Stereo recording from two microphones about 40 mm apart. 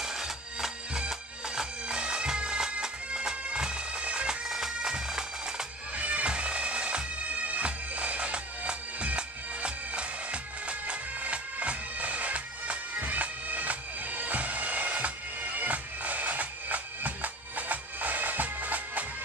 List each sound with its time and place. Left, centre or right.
0.0 s bagpipes: centre; by 4.4 s right
4.5 s bagpipes: centre
5.9 s bagpipes: right
7.2 s bagpipes: right